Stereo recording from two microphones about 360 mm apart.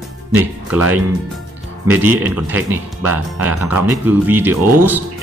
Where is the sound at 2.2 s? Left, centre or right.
Centre.